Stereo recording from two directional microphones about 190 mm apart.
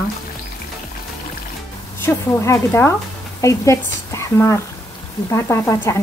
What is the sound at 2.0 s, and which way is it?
A woman's voice, 15° left (ahead or behind).